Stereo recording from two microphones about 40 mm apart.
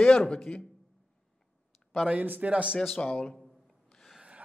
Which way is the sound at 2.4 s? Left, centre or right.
Right.